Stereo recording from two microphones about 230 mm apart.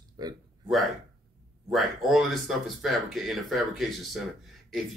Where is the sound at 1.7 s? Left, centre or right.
Centre.